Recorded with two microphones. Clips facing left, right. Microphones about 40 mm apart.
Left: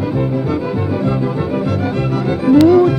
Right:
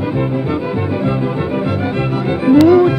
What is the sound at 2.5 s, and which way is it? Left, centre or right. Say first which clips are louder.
Music: right 1 dB; right.